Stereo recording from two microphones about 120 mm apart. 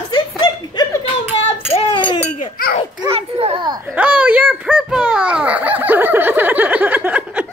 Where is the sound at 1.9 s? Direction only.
40° left (ahead or behind).